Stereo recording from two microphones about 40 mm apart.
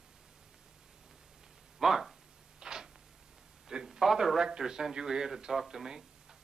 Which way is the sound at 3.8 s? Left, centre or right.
Centre.